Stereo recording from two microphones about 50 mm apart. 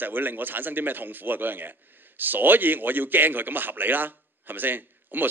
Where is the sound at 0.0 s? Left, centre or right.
Right.